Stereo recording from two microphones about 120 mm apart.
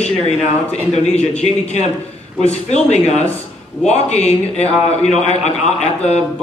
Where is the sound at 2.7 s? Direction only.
70° left (ahead or behind).